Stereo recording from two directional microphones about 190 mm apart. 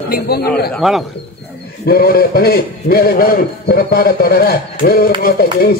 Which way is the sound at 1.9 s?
55° left (ahead or behind).